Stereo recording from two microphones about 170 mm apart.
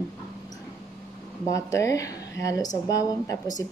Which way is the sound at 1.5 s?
20° left (ahead or behind).